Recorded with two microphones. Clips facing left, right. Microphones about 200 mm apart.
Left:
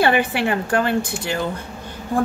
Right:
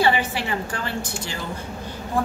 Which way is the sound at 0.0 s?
60° left (ahead or behind).